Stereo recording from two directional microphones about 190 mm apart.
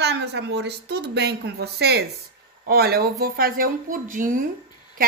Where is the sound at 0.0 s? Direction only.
60° right (ahead or behind).